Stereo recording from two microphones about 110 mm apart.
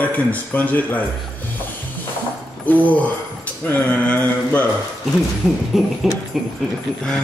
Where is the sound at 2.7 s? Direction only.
15° left (ahead or behind).